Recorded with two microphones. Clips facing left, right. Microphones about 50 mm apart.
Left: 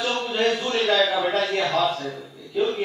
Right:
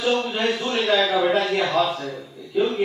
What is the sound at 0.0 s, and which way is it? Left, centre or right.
A woman's voice, centre.